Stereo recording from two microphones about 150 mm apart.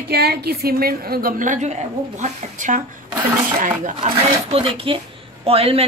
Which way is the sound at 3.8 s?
45° right (ahead or behind).